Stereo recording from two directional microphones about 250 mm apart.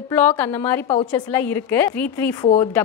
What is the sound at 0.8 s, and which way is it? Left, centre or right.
Speech, left.